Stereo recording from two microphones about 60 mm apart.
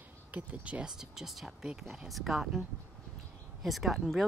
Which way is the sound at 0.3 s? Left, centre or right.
Right.